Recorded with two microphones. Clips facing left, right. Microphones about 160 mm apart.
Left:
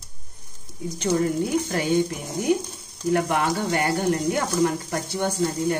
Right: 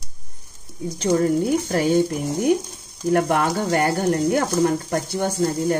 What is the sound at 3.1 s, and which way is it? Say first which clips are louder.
Speech: right 3 dB; 45° right (ahead or behind).